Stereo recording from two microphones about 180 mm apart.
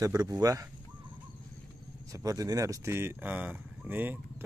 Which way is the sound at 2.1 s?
20° right (ahead or behind).